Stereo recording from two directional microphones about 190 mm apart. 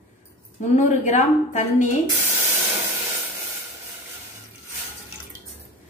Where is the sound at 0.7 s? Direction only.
40° left (ahead or behind).